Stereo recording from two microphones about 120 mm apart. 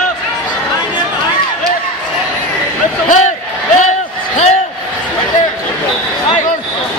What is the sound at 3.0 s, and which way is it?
Crowd, 90° left.